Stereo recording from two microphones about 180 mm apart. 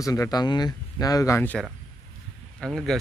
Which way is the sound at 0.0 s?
20° left (ahead or behind).